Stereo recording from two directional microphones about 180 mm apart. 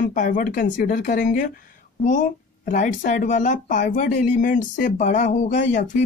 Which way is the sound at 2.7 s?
45° left (ahead or behind).